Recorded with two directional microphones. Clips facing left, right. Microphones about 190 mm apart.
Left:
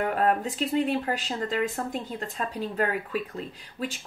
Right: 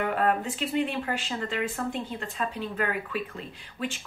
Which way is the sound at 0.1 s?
40° left (ahead or behind).